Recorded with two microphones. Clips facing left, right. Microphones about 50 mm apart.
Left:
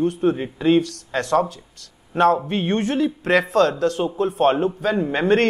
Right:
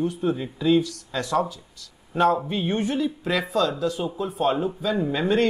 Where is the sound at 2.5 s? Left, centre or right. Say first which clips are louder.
Left 3 dB; left.